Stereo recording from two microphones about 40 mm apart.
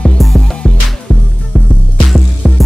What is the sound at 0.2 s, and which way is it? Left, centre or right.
Music, centre.